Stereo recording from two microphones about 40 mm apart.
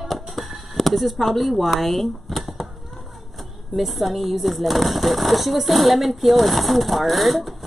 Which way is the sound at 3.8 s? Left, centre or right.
Centre.